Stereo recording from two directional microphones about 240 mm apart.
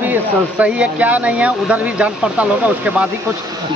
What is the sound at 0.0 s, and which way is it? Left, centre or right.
Speech, centre.